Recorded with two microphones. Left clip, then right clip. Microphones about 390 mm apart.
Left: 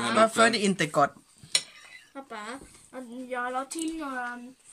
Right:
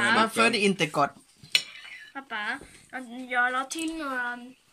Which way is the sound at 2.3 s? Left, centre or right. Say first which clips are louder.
Right 8 dB; left.